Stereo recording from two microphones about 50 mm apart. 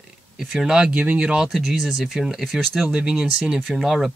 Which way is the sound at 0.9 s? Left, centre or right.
Right.